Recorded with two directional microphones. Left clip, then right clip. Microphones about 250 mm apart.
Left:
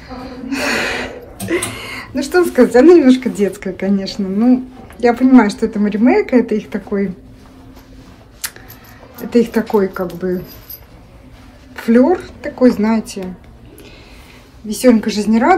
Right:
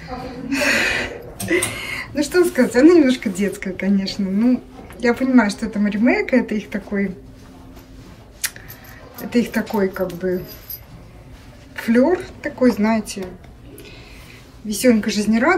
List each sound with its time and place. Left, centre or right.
0.0 s speech: centre
8.4 s scissors: centre
9.3 s speech: centre
11.7 s speech: centre
14.7 s speech: centre